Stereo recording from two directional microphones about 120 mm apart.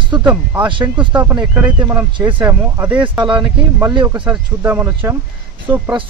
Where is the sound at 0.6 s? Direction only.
40° right (ahead or behind).